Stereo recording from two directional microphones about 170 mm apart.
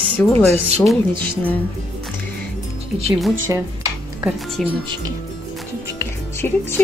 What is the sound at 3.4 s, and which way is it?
Speech, 20° right (ahead or behind).